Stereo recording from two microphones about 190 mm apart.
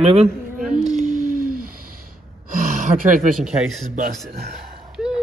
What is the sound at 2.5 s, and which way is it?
Gasp, 45° right (ahead or behind).